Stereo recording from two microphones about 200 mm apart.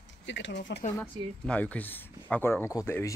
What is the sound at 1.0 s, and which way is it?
Speech, 5° left (ahead or behind).